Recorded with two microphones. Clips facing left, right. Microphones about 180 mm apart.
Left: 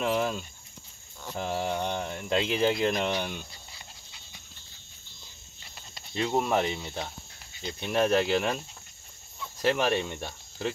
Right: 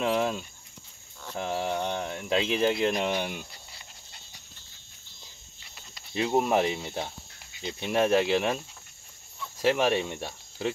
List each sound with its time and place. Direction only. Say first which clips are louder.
0.0 s speech: right 1 dB; centre (ahead or behind)
6.1 s speech: right 2 dB; 10° right (ahead or behind)
9.6 s speech: right 1 dB; 5° right (ahead or behind)